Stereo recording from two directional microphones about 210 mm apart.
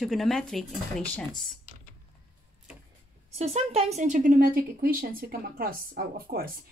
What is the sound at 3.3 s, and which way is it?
A woman's voice, 30° right (ahead or behind).